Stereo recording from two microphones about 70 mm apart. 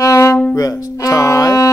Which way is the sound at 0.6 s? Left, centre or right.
Left.